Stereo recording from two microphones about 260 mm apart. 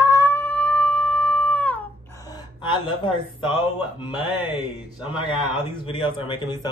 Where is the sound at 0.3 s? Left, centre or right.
Centre.